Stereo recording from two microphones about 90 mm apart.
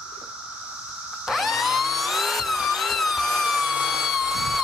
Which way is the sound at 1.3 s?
Centre (ahead or behind).